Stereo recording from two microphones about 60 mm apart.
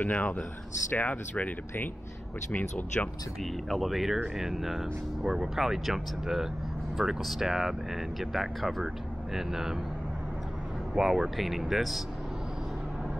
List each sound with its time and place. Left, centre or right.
0.0 s speech: left
3.6 s speech: centre
11.0 s speech: centre